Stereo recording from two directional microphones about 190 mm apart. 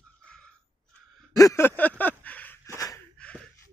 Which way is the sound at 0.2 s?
5° left (ahead or behind).